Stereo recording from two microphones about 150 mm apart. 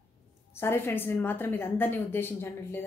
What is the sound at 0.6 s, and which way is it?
A woman's voice, 15° left (ahead or behind).